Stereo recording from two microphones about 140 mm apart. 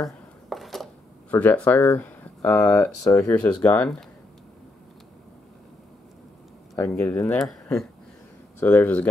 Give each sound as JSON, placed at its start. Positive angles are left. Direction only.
{"t": 0.5, "sound": "a sound", "side_deg": 0}
{"t": 1.3, "sound": "speech", "side_deg": 10}
{"t": 2.0, "sound": "a sound", "side_deg": 10}
{"t": 2.6, "sound": "speech", "side_deg": 20}
{"t": 3.3, "sound": "speech", "side_deg": 10}
{"t": 6.7, "sound": "speech", "side_deg": 15}
{"t": 7.2, "sound": "speech", "side_deg": 5}
{"t": 8.5, "sound": "speech", "side_deg": 15}